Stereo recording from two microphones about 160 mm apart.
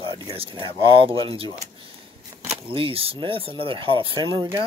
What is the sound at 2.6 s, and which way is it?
Speech, 35° right (ahead or behind).